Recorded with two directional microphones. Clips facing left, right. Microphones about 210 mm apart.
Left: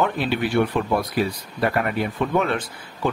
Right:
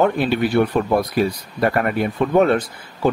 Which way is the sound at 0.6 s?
40° right (ahead or behind).